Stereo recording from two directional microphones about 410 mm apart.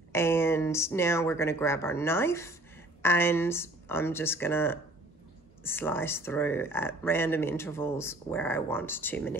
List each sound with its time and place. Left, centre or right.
0.1 s speech: centre